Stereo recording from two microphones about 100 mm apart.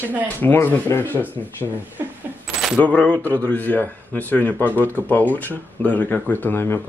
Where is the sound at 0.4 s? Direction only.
20° left (ahead or behind).